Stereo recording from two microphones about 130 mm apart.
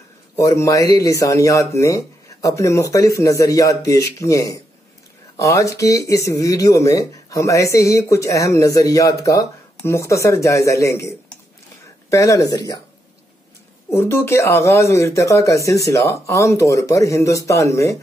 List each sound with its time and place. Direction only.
0.4 s speech: 25° left (ahead or behind)
13.8 s speech: 20° left (ahead or behind)